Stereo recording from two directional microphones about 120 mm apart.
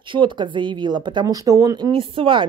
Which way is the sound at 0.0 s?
45° right (ahead or behind).